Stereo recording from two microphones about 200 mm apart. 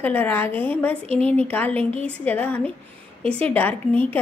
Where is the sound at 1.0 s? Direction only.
30° right (ahead or behind).